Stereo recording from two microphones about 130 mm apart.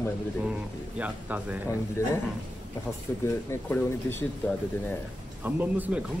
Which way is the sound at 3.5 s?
20° left (ahead or behind).